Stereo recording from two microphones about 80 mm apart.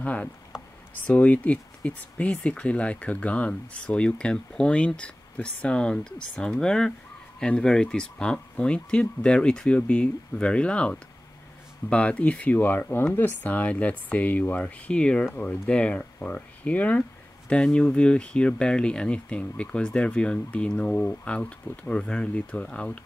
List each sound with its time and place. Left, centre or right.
0.0 s speech: centre
15.2 s speech: left
15.7 s speech: centre